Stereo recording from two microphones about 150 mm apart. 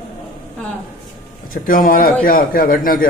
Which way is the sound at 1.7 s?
70° left (ahead or behind).